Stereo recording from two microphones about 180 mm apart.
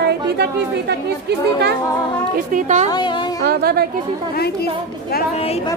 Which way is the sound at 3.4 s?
60° right (ahead or behind).